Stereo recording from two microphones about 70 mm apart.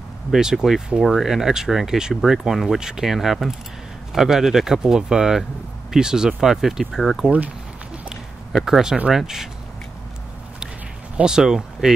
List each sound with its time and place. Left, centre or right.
0.3 s speech: centre
7.2 s speech: centre
8.5 s speech: centre
11.1 s speech: centre